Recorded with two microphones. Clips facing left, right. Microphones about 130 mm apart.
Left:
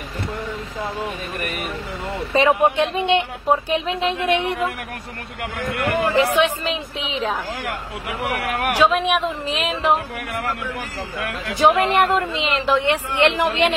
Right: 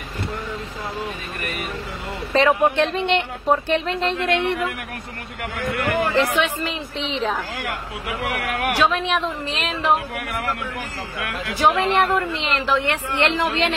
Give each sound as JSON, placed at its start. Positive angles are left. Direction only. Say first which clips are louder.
{"t": 2.3, "sound": "speech", "louder": "even", "side_deg": 15}
{"t": 4.2, "sound": "speech", "louder": "even", "side_deg": 15}
{"t": 6.1, "sound": "a woman's voice", "louder": "left 2 dB", "side_deg": 15}
{"t": 8.7, "sound": "speech", "louder": "left 4 dB", "side_deg": 15}
{"t": 11.5, "sound": "speech", "louder": "left 2 dB", "side_deg": 15}